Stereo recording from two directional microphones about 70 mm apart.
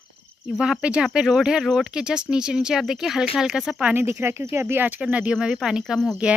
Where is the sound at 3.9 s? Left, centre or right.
Right.